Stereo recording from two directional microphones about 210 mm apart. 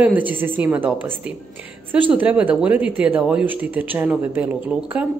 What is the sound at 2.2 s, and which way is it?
Speech, 5° right (ahead or behind).